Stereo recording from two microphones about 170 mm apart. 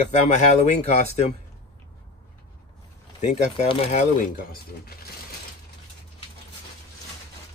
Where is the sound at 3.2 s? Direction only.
45° left (ahead or behind).